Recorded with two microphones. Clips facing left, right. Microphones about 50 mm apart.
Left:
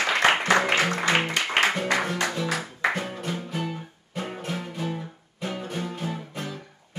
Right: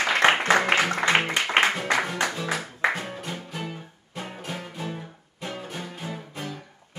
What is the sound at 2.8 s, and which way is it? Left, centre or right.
Music, centre.